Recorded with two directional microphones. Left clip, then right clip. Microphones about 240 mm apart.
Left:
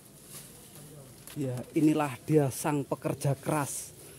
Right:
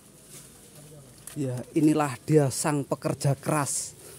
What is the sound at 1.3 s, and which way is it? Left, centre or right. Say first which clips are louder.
Speech: right 3 dB; centre.